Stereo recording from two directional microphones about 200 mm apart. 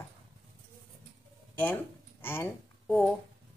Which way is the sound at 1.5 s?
10° left (ahead or behind).